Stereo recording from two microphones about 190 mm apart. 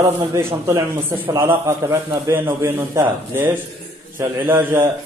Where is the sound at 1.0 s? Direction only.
10° right (ahead or behind).